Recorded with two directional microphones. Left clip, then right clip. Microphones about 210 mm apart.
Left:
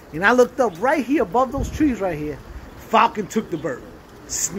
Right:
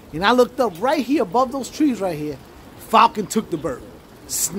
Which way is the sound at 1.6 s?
20° right (ahead or behind).